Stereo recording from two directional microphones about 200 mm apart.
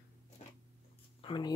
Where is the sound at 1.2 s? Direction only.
25° left (ahead or behind).